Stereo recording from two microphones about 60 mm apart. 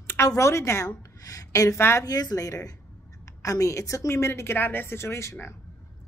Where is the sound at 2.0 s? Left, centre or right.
Left.